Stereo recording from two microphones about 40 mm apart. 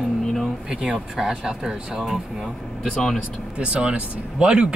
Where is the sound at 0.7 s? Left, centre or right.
Right.